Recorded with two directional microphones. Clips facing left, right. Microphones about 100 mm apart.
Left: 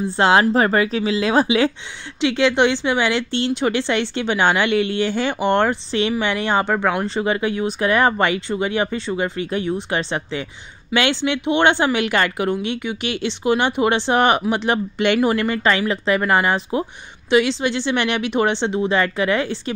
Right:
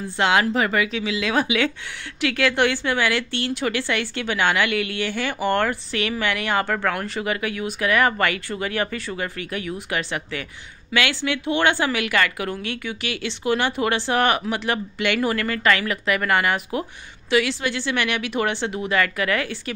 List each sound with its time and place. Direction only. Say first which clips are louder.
0.2 s a woman's voice: left 4 dB; 35° left (ahead or behind)